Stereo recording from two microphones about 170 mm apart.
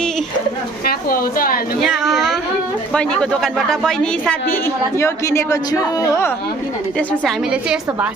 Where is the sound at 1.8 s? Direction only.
Centre (ahead or behind).